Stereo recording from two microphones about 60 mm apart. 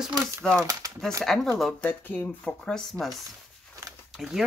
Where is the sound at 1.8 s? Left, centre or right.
Left.